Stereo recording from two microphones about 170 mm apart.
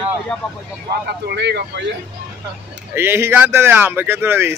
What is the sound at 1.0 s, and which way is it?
Speech, 85° right.